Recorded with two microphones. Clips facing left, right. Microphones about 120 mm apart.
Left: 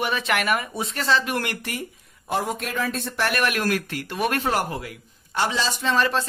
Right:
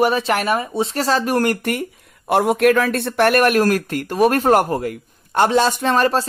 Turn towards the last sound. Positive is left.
turn(degrees=-40)  # may be behind; listen again after turning